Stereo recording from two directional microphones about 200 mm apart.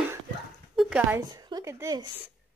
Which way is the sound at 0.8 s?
5° right (ahead or behind).